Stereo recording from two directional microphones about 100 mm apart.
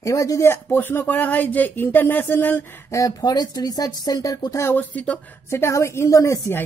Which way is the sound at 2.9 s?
35° left (ahead or behind).